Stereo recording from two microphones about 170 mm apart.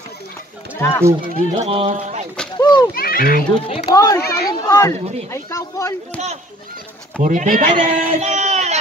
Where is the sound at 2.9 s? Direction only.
60° left (ahead or behind).